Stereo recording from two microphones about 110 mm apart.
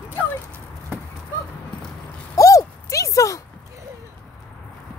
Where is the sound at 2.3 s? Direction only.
30° left (ahead or behind).